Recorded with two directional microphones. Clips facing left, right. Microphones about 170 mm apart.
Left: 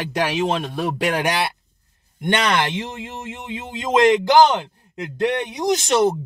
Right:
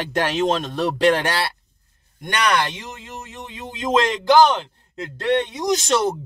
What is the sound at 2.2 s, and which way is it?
Speech, 25° left (ahead or behind).